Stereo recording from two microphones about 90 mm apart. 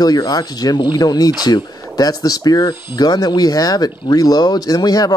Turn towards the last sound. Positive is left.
turn(degrees=45)  # may be behind; listen again after turning